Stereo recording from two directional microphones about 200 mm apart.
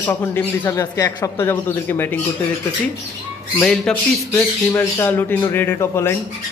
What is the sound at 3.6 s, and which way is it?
Speech, 5° left (ahead or behind).